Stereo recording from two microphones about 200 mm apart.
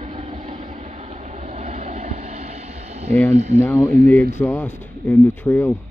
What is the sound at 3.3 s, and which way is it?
Speech, 35° right (ahead or behind).